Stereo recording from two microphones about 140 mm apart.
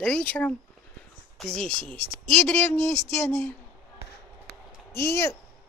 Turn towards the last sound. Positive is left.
turn(degrees=20)  # may be behind; listen again after turning